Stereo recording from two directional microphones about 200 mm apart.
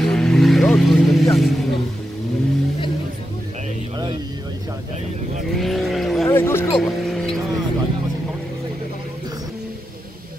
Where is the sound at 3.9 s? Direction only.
20° right (ahead or behind).